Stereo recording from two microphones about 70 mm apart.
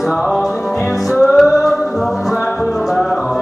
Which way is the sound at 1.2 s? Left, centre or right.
Centre.